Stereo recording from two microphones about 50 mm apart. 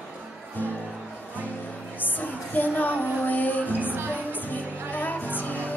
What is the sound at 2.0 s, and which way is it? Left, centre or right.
Music, left.